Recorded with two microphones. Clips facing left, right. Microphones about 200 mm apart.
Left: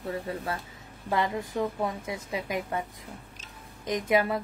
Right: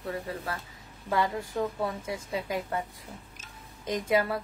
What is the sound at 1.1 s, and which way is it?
A woman's voice, 20° left (ahead or behind).